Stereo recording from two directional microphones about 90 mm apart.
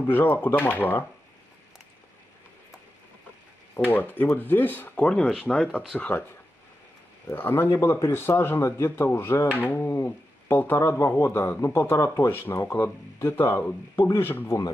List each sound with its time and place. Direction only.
0.1 s speech: 25° left (ahead or behind)
3.7 s speech: 20° left (ahead or behind)
7.2 s speech: 25° left (ahead or behind)